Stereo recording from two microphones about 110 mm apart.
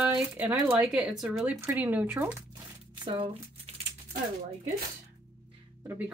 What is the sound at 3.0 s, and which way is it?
Speech, 50° right (ahead or behind).